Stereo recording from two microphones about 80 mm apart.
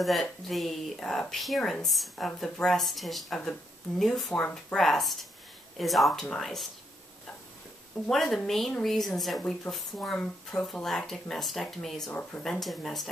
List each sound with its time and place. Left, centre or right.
0.0 s speech: centre
4.3 s speech: centre
4.7 s speech: centre
8.1 s speech: centre
10.1 s speech: centre
12.1 s speech: centre
12.4 s speech: centre